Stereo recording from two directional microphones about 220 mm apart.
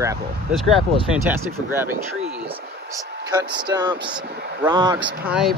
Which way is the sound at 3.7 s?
20° right (ahead or behind).